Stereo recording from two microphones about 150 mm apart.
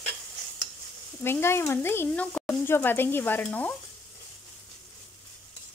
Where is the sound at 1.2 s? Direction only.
15° left (ahead or behind).